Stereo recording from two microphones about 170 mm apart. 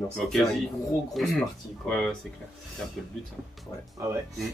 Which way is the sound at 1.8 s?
Centre (ahead or behind).